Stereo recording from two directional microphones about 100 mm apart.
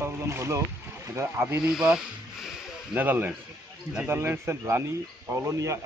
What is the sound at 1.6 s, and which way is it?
Speech, 5° right (ahead or behind).